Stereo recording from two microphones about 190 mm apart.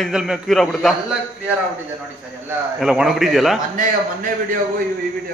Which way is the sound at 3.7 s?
45° right (ahead or behind).